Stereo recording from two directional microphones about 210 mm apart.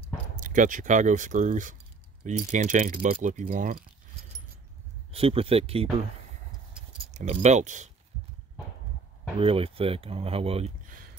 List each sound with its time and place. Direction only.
0.4 s speech: 40° right (ahead or behind)
5.1 s speech: 25° right (ahead or behind)
7.1 s speech: 35° right (ahead or behind)
9.4 s speech: 25° right (ahead or behind)